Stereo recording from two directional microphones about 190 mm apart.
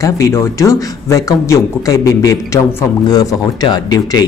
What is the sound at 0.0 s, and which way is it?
Speech, 15° left (ahead or behind).